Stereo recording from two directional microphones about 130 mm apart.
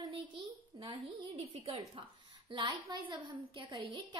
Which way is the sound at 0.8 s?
45° right (ahead or behind).